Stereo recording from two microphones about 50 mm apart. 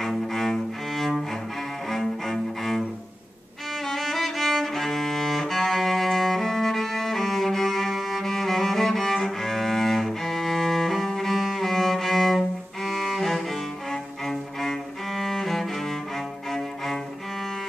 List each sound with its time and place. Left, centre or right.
0.0 s cello: centre
3.8 s cello: centre
16.4 s music: centre